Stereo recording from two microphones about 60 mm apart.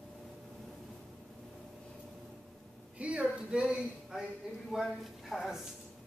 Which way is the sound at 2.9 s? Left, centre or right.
Right.